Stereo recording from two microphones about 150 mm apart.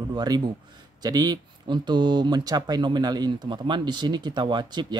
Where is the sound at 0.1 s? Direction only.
25° right (ahead or behind).